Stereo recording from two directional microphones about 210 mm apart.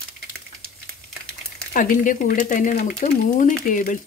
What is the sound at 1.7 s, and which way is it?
Speech, 40° left (ahead or behind).